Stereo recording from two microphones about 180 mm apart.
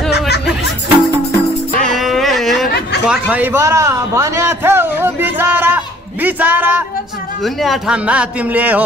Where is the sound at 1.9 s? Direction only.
Centre (ahead or behind).